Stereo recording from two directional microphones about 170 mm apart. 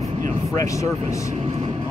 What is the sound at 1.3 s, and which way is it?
Vehicle, 35° right (ahead or behind).